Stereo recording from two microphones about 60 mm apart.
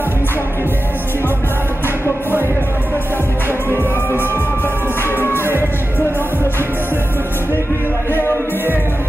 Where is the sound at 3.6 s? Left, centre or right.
Left.